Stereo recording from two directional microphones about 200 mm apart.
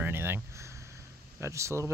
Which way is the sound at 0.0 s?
10° right (ahead or behind).